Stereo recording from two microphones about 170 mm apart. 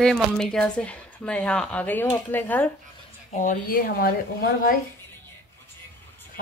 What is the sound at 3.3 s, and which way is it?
Speech, 50° left (ahead or behind).